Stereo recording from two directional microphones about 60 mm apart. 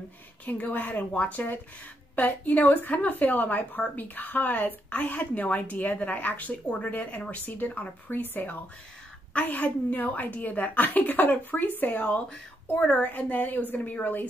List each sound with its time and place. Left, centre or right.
0.5 s a woman's voice: left